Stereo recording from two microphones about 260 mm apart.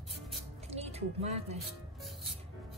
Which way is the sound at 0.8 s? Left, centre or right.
Right.